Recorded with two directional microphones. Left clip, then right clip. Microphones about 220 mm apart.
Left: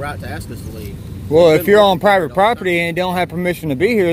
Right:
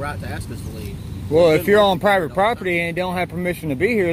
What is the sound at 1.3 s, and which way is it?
Speech, 20° left (ahead or behind).